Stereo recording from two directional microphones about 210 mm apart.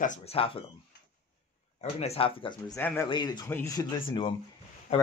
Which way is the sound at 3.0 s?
20° left (ahead or behind).